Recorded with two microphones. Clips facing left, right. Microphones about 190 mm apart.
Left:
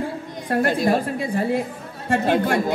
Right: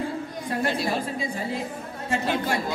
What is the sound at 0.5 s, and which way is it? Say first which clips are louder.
Speech: left 7 dB; 55° left (ahead or behind).